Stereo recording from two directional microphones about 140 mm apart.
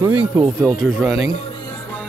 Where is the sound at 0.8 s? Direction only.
Centre (ahead or behind).